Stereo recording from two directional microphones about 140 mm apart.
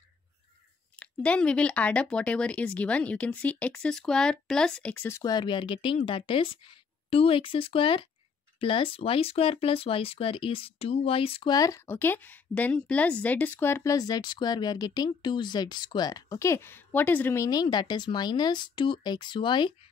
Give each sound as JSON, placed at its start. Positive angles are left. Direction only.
{"t": 0.9, "sound": "speech", "side_deg": 10}
{"t": 5.3, "sound": "speech", "side_deg": 35}
{"t": 11.5, "sound": "a woman's voice", "side_deg": 25}